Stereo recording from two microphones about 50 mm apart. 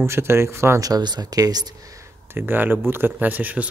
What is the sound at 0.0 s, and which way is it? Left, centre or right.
Speech, right.